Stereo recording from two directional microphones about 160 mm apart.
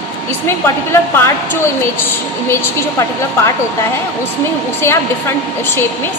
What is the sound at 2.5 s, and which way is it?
A woman's voice, 20° left (ahead or behind).